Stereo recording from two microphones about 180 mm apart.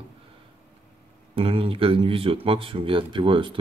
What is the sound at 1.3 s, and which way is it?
Speech, 30° right (ahead or behind).